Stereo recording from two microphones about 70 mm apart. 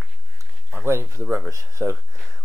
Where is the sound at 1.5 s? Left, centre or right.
Right.